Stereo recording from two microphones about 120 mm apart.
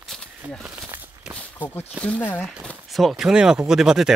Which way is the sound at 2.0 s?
15° left (ahead or behind).